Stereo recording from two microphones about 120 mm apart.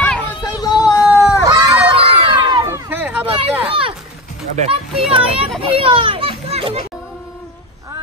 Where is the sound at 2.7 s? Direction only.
15° right (ahead or behind).